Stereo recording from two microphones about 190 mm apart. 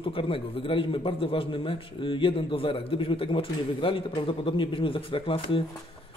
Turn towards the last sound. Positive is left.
turn(degrees=30)  # may be behind; listen again after turning